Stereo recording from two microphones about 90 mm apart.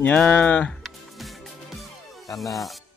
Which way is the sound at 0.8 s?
Centre (ahead or behind).